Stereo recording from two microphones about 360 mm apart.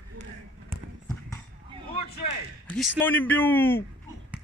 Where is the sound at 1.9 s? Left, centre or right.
Left.